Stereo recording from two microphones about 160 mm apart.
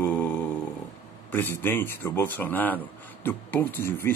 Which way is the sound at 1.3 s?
10° left (ahead or behind).